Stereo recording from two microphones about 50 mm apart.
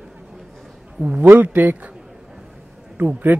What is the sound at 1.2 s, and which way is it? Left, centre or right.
Speech, right.